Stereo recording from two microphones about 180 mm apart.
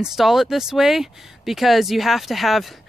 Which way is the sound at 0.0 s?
Centre (ahead or behind).